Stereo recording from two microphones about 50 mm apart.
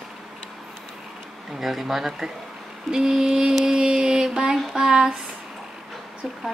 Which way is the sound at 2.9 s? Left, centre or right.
Centre.